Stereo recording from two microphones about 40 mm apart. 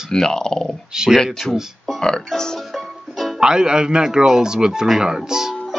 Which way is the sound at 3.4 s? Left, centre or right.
Centre.